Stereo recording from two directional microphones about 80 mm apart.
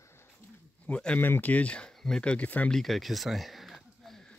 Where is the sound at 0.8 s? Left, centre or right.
Centre.